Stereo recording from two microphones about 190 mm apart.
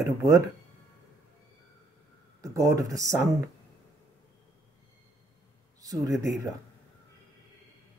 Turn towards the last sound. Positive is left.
turn(degrees=-15)  # may be behind; listen again after turning